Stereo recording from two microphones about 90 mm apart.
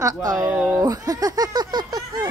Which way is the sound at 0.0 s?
45° right (ahead or behind).